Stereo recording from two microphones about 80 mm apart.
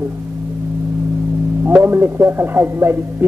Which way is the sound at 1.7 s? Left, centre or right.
Right.